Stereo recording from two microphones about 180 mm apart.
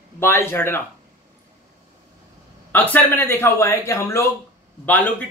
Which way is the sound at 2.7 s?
10° left (ahead or behind).